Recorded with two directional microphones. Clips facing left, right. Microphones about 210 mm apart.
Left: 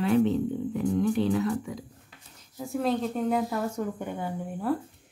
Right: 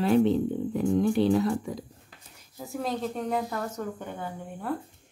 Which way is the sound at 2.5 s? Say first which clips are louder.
Left 4 dB; centre (ahead or behind).